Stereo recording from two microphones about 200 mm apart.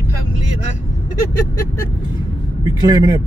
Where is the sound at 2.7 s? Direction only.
20° right (ahead or behind).